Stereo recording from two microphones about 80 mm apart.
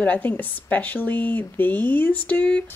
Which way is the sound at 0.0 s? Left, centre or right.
Left.